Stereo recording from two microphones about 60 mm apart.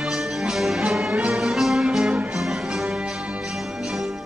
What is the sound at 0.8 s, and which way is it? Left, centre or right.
Music, centre.